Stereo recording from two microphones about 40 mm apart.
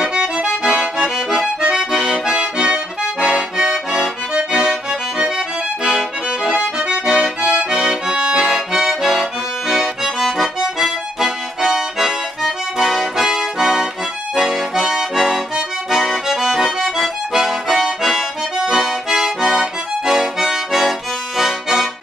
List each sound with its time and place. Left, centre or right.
0.0 s accordion: right
6.5 s accordion: right; by 21.8 s centre